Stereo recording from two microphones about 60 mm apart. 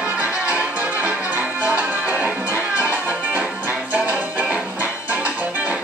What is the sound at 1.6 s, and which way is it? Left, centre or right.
Music, right.